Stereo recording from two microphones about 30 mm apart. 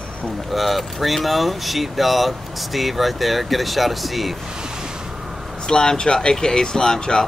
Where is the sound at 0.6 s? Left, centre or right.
Centre.